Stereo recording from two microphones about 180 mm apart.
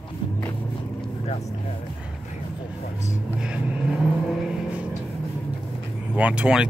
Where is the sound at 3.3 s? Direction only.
5° right (ahead or behind).